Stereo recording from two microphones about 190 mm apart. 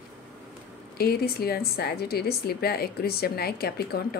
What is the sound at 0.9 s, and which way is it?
A woman's voice, 55° left (ahead or behind).